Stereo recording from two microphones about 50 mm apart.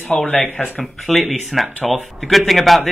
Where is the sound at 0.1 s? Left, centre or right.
Centre.